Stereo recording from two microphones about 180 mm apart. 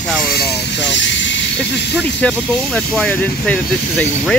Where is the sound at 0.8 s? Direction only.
85° left.